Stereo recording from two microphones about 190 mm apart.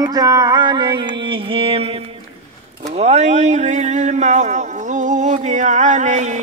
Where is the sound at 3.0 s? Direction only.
35° right (ahead or behind).